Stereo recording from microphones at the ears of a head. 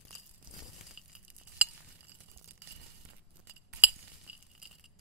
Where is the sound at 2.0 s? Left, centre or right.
Right.